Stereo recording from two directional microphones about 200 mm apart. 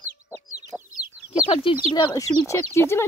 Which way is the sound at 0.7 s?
5° left (ahead or behind).